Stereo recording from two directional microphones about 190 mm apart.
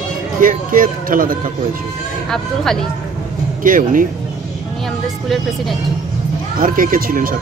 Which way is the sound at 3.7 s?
45° right (ahead or behind).